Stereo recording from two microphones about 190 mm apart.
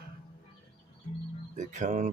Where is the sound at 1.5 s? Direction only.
40° right (ahead or behind).